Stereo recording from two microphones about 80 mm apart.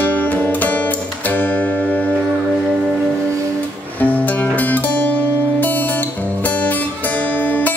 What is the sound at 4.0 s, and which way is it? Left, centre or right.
Music, left.